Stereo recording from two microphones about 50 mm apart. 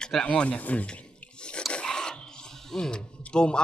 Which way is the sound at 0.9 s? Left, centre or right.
Left.